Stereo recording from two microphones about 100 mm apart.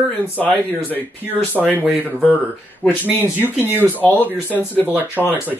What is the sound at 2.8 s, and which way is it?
Speech, 10° right (ahead or behind).